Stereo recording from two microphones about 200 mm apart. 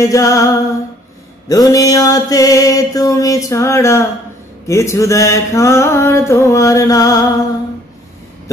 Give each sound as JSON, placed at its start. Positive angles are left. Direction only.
{"t": 0.0, "sound": "mantra", "side_deg": 15}